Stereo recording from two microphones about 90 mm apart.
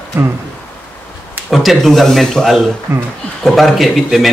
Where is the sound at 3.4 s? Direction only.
Centre (ahead or behind).